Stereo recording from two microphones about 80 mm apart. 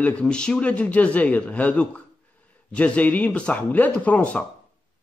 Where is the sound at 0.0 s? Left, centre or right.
Centre.